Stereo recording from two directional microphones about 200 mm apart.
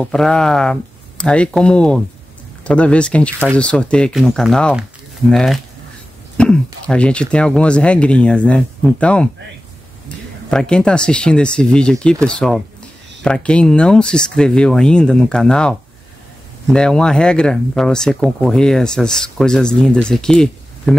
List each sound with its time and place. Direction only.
0.0 s speech: 5° left (ahead or behind)
10.5 s speech: 5° left (ahead or behind)